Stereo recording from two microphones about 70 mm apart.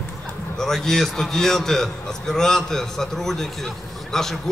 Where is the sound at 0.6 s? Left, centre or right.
Centre.